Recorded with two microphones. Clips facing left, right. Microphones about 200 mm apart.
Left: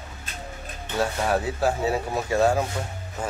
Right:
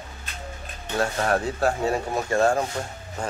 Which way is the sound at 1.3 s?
5° left (ahead or behind).